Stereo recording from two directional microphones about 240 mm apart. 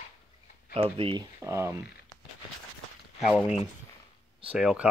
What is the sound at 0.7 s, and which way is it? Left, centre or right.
Speech, right.